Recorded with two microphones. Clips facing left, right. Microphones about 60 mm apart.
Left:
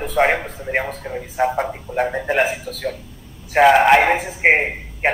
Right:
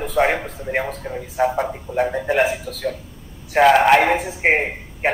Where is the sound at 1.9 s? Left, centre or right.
Left.